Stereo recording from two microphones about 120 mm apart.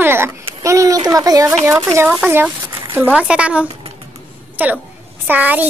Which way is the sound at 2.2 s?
15° right (ahead or behind).